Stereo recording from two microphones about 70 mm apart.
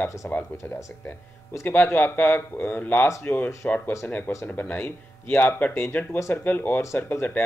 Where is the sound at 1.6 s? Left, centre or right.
Left.